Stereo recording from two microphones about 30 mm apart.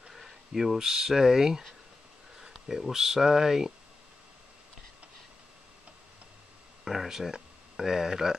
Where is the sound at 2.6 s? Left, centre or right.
Centre.